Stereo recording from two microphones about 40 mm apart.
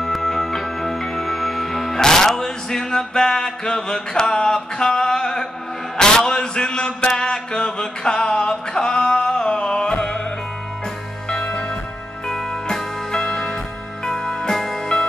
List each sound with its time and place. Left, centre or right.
0.0 s music: centre
5.9 s mantra: centre
11.2 s music: left
12.3 s music: centre